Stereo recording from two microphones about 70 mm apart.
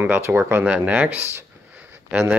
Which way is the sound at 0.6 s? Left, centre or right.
Right.